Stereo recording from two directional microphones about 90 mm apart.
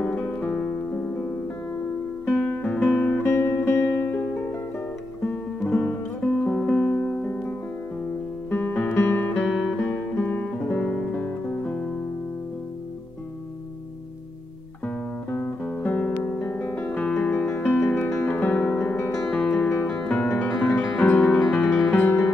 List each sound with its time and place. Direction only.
0.0 s music: 15° left (ahead or behind)
2.2 s music: 20° left (ahead or behind)
3.3 s music: 30° left (ahead or behind); by 7.2 s 10° left (ahead or behind)
8.5 s guitar: 20° left (ahead or behind)
9.5 s music: centre (ahead or behind)
9.9 s music: 20° left (ahead or behind)
14.9 s music: 20° left (ahead or behind)